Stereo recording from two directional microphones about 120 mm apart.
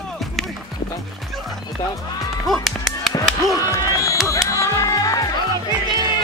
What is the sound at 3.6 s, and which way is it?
Music, 30° left (ahead or behind).